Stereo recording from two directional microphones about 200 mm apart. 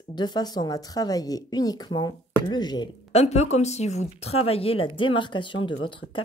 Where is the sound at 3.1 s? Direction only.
35° left (ahead or behind).